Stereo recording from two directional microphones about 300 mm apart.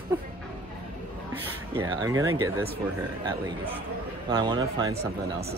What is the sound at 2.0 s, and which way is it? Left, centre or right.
Speech, centre.